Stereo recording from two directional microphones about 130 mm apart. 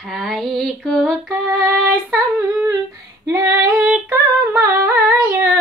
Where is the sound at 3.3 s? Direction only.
20° right (ahead or behind).